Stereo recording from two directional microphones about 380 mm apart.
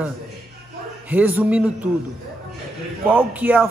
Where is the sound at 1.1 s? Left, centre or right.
Centre.